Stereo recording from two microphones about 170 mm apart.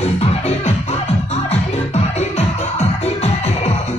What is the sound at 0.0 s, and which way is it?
Music, 40° left (ahead or behind).